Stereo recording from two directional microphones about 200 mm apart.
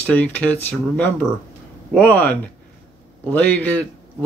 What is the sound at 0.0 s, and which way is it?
Speech, 5° left (ahead or behind).